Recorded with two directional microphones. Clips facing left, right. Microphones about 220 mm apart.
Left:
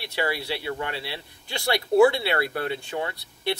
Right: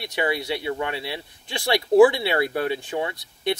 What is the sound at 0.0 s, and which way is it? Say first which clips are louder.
Speech: right 3 dB; 20° right (ahead or behind).